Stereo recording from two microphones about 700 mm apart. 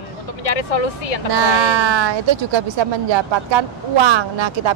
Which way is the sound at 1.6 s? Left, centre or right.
Right.